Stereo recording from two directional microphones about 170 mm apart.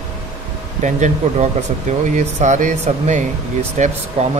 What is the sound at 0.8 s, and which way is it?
Speech, 45° right (ahead or behind).